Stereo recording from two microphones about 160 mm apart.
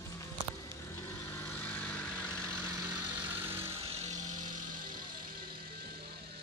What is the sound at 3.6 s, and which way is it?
Music, 35° right (ahead or behind).